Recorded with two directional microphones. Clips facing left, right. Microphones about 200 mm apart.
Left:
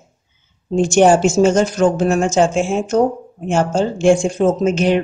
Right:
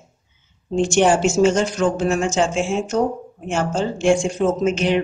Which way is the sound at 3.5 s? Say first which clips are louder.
Left 5 dB; 35° left (ahead or behind).